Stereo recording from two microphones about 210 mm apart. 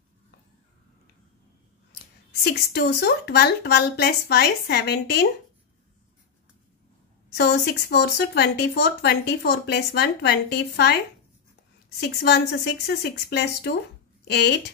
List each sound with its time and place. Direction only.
2.4 s speech: 50° left (ahead or behind)
7.2 s speech: 55° left (ahead or behind)
12.0 s speech: 50° left (ahead or behind)